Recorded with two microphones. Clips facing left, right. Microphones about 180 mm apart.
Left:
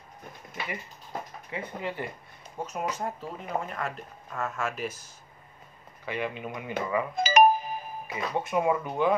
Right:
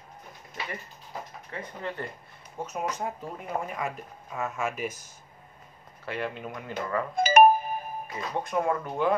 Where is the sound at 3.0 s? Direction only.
5° right (ahead or behind).